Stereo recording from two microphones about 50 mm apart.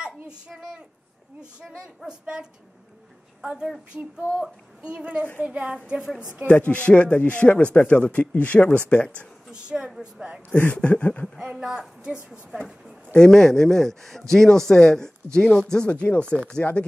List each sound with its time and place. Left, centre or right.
4.4 s a woman's voice: centre
6.4 s speech: left
9.5 s a woman's voice: centre
10.6 s speech: left
11.3 s a woman's voice: centre
13.1 s speech: centre
16.6 s speech: left